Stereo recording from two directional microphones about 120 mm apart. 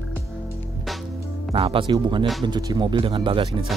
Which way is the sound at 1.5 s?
45° right (ahead or behind).